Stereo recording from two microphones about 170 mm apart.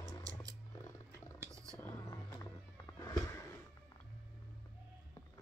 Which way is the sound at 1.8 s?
20° left (ahead or behind).